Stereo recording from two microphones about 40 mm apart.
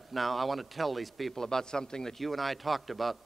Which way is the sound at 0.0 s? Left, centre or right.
Centre.